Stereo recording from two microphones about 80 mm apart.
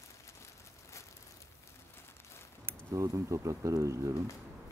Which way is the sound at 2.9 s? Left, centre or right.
Right.